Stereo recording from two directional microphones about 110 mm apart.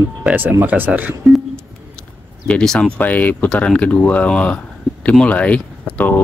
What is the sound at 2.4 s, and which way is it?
Speech, 10° left (ahead or behind).